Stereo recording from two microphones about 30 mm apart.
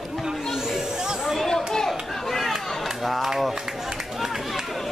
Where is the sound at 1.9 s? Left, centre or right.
Centre.